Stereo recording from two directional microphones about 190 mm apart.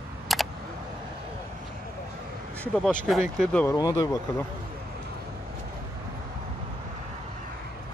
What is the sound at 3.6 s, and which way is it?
Speech, 20° left (ahead or behind).